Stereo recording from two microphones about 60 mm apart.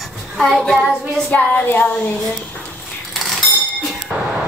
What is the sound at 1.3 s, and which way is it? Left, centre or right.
Speech, left.